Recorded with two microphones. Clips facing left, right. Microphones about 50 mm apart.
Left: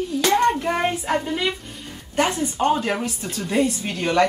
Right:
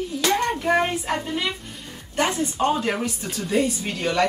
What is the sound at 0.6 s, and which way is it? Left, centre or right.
Speech, centre.